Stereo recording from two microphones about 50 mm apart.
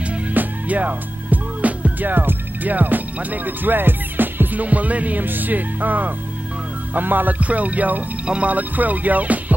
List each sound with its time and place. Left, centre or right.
0.0 s music: right
0.4 s speech: right
6.9 s music: right